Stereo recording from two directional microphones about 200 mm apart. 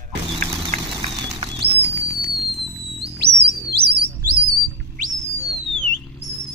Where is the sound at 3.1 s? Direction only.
55° right (ahead or behind).